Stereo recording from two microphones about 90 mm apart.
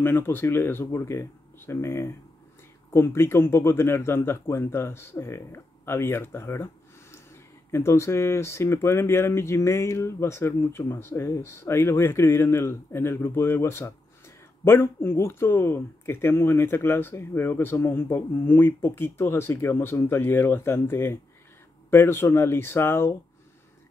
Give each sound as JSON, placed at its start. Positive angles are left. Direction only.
{"t": 0.0, "sound": "speech", "side_deg": 25}